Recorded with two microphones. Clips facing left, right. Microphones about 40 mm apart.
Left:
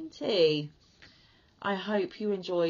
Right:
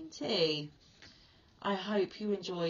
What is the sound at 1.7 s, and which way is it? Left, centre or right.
Speech, left.